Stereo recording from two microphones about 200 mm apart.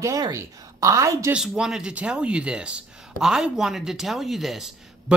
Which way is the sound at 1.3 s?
5° right (ahead or behind).